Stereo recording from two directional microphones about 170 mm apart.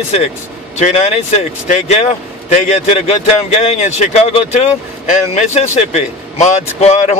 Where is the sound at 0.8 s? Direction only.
45° left (ahead or behind).